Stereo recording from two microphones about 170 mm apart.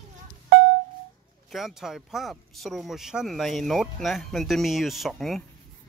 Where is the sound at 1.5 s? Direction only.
Centre (ahead or behind).